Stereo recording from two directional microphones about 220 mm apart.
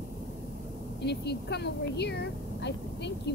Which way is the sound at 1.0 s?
50° left (ahead or behind).